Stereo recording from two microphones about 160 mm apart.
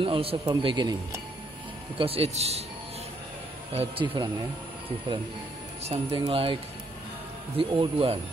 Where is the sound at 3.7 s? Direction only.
40° right (ahead or behind).